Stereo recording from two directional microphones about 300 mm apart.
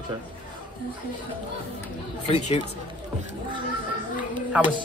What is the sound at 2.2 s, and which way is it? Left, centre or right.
Speech, left.